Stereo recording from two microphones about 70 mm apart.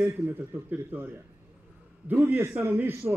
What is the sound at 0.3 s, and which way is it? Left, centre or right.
A man's voice, right.